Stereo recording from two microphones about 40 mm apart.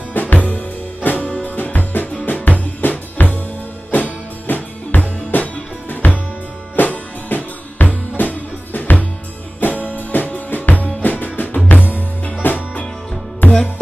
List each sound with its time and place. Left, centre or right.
0.1 s music: left
3.9 s music: left